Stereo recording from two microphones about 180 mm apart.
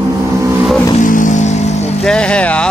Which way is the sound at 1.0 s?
45° left (ahead or behind).